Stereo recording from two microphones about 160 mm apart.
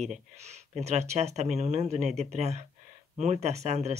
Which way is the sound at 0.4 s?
45° right (ahead or behind).